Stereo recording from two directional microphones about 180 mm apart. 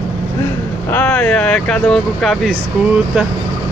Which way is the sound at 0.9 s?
10° left (ahead or behind).